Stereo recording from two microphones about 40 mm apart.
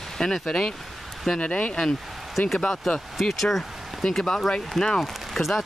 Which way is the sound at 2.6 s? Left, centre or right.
Centre.